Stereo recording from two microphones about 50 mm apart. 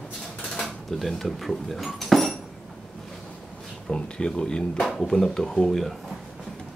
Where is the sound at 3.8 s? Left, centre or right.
Centre.